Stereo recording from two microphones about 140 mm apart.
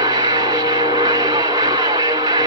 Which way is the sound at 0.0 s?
30° right (ahead or behind).